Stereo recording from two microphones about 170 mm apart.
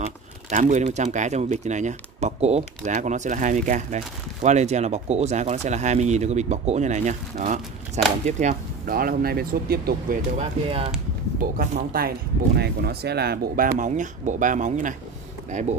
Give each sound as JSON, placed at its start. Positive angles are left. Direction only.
{"t": 0.0, "sound": "speech", "side_deg": -45}
{"t": 8.8, "sound": "speech", "side_deg": -60}
{"t": 10.3, "sound": "speech", "side_deg": -35}
{"t": 11.3, "sound": "speech", "side_deg": -50}
{"t": 13.7, "sound": "speech", "side_deg": -45}